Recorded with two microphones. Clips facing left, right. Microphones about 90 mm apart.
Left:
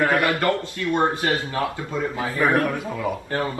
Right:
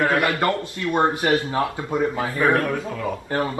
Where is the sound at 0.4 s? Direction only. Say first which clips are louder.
Even; 20° right (ahead or behind).